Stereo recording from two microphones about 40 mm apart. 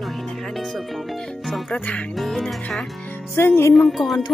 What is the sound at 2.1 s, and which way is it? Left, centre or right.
Speech, centre.